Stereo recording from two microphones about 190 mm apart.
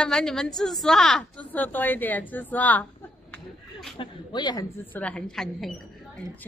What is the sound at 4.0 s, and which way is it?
Speech, 25° left (ahead or behind).